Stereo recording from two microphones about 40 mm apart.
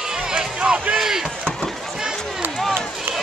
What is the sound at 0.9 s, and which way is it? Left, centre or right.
Chop, centre.